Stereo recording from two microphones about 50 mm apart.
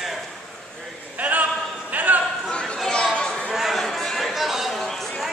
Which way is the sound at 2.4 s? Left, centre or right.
Centre.